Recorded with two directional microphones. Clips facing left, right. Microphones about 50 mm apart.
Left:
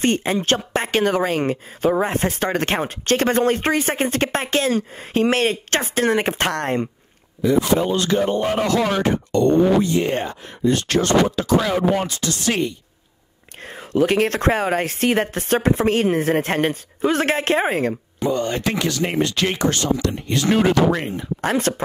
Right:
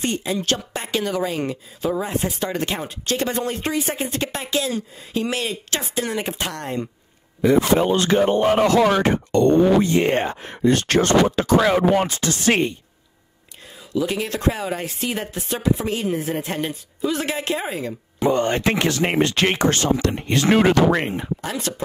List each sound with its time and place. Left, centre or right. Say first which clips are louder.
0.0 s speech: left 4 dB; left
7.4 s speech: right 1 dB; right
7.7 s speech: right 1 dB; right
10.6 s speech: right 1 dB; right
11.0 s speech: even; right
13.7 s speech: left 5 dB; left
18.3 s speech: right 2 dB; right
21.4 s speech: left 7 dB; left